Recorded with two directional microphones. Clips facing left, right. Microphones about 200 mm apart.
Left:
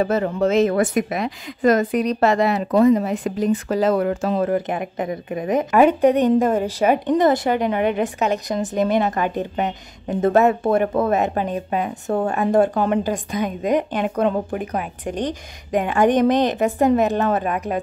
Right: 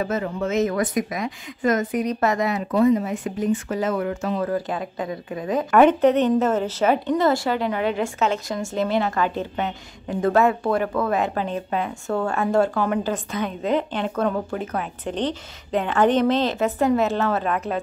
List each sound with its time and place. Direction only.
0.0 s speech: 35° left (ahead or behind)
1.9 s speech: 75° left (ahead or behind)
2.1 s speech: 30° left (ahead or behind)
3.1 s speech: 75° left (ahead or behind)
3.6 s a woman's voice: 35° left (ahead or behind); by 5.7 s 20° left (ahead or behind)
5.7 s a woman's voice: 10° left (ahead or behind)